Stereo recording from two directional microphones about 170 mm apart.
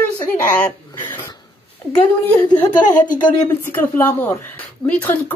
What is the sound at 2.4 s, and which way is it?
Speech, 25° left (ahead or behind).